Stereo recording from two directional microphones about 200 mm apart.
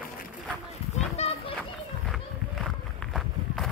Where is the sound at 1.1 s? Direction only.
30° left (ahead or behind).